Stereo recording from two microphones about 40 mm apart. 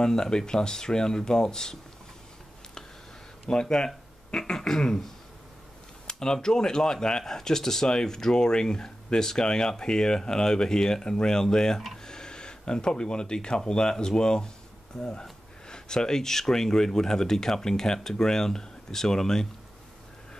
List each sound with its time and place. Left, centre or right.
0.0 s speech: centre
3.4 s speech: centre